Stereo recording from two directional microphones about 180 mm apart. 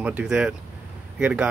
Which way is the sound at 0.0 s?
5° right (ahead or behind).